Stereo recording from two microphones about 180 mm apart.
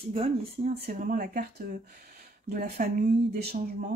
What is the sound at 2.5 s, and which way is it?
Speech, 50° right (ahead or behind).